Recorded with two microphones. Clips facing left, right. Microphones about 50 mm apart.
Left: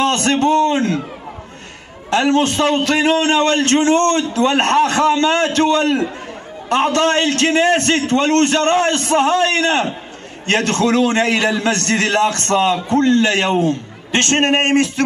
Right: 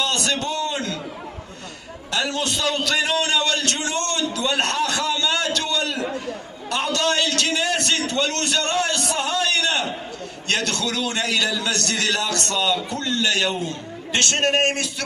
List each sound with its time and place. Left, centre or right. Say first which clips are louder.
0.0 s a man's voice: left 8 dB; left
2.0 s a man's voice: left 9 dB; left